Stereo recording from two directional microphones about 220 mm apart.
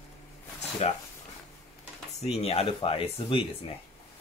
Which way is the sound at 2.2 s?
30° left (ahead or behind).